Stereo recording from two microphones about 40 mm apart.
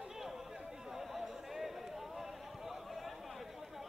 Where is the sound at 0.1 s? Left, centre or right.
Centre.